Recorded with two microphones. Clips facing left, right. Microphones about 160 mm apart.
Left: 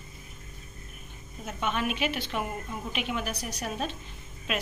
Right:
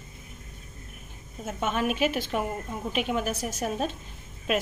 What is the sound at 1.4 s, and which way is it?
A woman's voice, 45° right (ahead or behind).